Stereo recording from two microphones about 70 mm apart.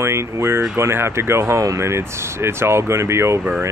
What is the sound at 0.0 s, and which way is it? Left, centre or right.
Speech, right.